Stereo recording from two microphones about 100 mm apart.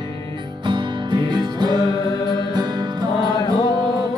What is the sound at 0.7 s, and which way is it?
Music, 45° right (ahead or behind).